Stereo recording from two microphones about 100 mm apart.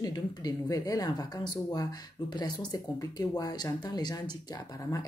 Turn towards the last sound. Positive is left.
turn(degrees=35)  # may be behind; listen again after turning